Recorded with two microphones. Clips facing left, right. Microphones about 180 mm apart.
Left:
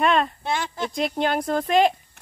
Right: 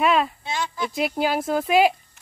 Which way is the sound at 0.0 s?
5° right (ahead or behind).